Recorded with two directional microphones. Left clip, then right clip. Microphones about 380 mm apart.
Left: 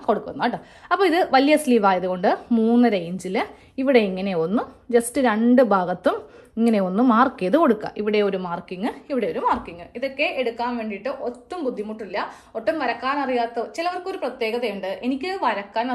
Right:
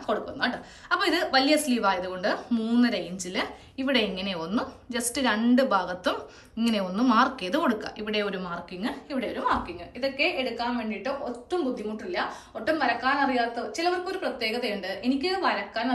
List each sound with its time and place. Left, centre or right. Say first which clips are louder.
0.0 s a woman's voice: left 6 dB; centre